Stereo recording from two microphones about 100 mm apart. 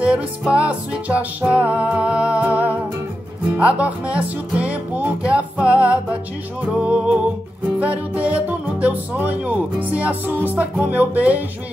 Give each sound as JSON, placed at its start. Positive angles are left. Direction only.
{"t": 0.0, "sound": "music", "side_deg": -10}
{"t": 3.5, "sound": "speech", "side_deg": -15}